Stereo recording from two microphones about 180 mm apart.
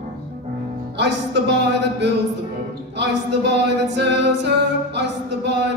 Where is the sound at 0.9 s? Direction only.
75° right (ahead or behind).